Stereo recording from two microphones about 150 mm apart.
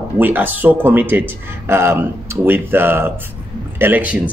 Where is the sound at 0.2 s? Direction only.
15° right (ahead or behind).